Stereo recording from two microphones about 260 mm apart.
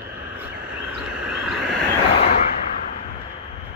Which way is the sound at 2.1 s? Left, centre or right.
Left.